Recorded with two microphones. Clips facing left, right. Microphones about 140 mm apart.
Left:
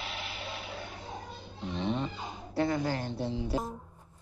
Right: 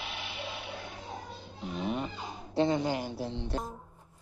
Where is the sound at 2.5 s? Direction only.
25° right (ahead or behind).